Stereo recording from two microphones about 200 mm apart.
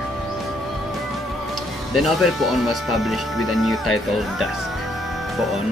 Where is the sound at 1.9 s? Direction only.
Centre (ahead or behind).